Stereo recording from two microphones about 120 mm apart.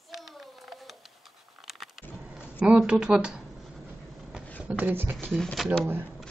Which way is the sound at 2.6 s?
10° right (ahead or behind).